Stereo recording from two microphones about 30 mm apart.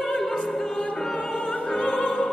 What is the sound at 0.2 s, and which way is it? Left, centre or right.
Opera, centre.